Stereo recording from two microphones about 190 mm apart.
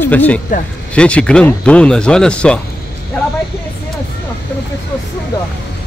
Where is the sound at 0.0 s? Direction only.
10° left (ahead or behind).